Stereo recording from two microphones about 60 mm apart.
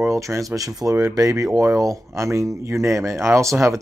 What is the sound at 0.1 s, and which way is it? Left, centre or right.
Speech, right.